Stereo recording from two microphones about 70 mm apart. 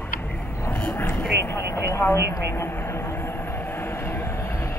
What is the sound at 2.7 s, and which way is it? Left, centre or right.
Vehicle, left.